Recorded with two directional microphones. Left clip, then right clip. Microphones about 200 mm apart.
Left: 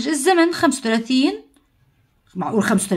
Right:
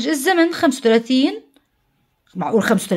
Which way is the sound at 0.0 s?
25° right (ahead or behind).